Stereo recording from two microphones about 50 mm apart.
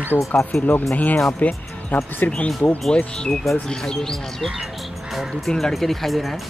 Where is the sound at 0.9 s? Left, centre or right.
Left.